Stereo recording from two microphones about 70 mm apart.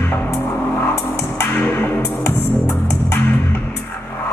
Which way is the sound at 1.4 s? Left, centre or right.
Left.